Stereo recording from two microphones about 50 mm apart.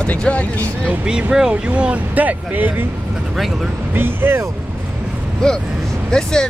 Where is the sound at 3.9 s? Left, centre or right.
Right.